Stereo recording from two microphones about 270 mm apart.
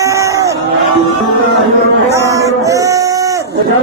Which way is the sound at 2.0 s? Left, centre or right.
Centre.